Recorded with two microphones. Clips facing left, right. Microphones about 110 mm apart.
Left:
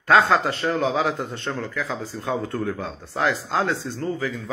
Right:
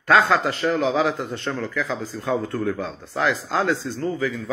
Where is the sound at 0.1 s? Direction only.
25° left (ahead or behind).